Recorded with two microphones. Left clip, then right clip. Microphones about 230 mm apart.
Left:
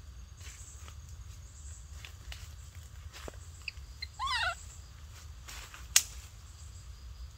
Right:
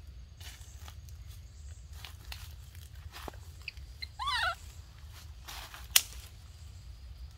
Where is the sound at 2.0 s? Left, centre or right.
Right.